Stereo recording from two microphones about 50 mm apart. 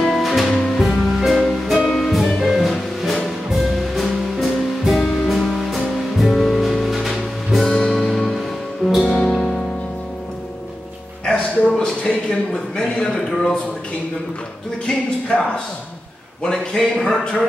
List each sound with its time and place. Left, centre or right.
0.0 s music: centre
0.8 s music: centre
9.1 s music: centre
11.2 s a sound: centre
16.4 s a man's voice: centre